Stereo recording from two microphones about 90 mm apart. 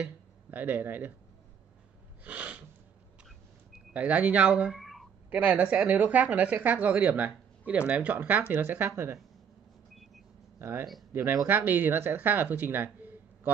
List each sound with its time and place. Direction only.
0.0 s speech: 20° right (ahead or behind)
2.2 s sneeze: 15° right (ahead or behind)
3.9 s speech: 15° right (ahead or behind)
4.7 s a sound: centre (ahead or behind)
5.3 s speech: 15° right (ahead or behind)
10.6 s speech: 30° right (ahead or behind)